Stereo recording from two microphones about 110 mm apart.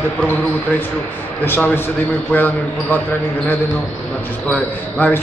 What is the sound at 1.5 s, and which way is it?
A man's voice, 15° left (ahead or behind).